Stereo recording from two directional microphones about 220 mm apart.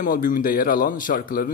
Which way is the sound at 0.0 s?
35° left (ahead or behind).